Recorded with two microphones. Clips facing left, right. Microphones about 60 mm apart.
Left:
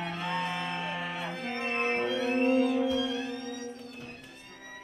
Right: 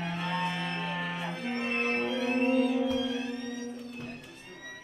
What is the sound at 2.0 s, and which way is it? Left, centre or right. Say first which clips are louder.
Music: left 1 dB; right.